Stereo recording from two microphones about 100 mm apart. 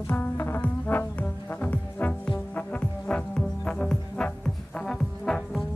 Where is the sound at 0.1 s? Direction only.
25° left (ahead or behind).